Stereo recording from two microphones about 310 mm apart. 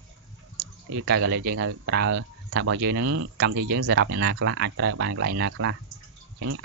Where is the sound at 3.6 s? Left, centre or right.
Right.